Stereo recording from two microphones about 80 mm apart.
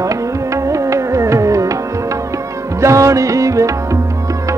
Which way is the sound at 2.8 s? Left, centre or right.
Right.